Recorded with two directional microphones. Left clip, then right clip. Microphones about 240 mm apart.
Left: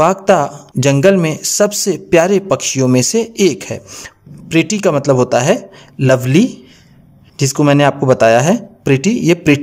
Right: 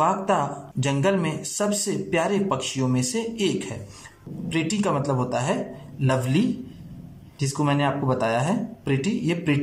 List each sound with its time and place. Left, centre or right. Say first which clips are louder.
0.0 s speech: left 11 dB; left